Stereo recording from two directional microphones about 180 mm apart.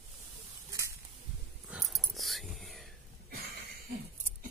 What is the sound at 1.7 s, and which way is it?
Whispering, centre (ahead or behind).